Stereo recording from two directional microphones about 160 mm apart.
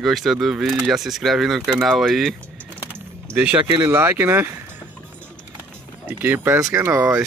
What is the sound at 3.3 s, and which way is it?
Speech, 5° right (ahead or behind).